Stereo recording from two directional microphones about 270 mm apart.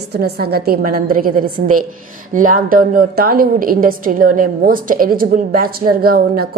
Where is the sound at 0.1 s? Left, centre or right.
Right.